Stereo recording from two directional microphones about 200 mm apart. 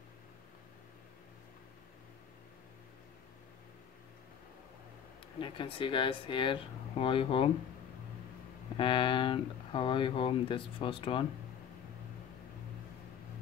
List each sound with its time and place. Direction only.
5.4 s speech: 25° left (ahead or behind)
8.7 s speech: 25° left (ahead or behind)